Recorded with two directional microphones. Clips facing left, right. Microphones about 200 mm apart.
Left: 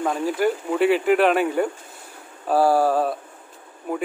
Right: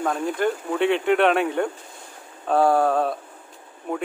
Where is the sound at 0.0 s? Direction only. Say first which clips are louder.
Left 2 dB; 5° left (ahead or behind).